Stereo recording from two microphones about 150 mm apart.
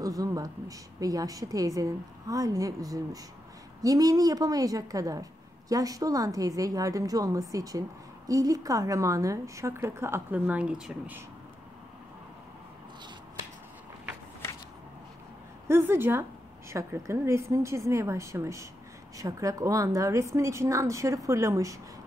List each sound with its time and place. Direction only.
0.0 s a woman's voice: 25° right (ahead or behind); by 11.1 s 5° right (ahead or behind)
15.7 s a woman's voice: 15° right (ahead or behind)